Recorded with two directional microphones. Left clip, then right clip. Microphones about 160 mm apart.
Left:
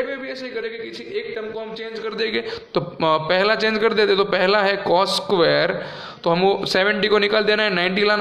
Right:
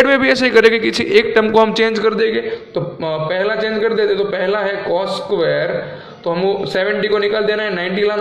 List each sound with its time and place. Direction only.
0.0 s a man's voice: 45° right (ahead or behind)
3.1 s a man's voice: 30° left (ahead or behind)